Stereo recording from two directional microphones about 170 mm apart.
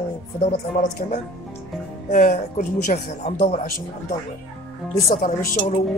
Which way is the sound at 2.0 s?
45° left (ahead or behind).